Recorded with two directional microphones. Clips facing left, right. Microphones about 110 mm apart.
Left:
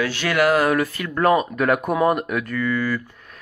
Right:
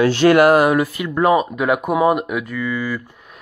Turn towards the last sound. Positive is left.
turn(degrees=-10)  # may be behind; listen again after turning